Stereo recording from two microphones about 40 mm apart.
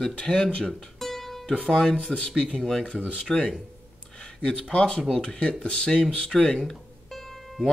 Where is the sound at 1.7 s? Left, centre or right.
Centre.